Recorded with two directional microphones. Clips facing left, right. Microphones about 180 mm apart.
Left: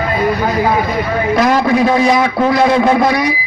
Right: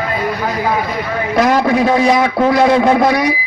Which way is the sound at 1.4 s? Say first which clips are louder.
Right 1 dB; 55° right (ahead or behind).